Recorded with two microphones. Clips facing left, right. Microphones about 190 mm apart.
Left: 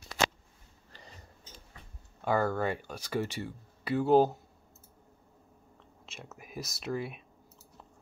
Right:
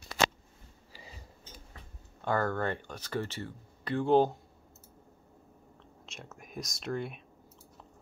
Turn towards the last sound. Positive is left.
turn(degrees=5)  # may be behind; listen again after turning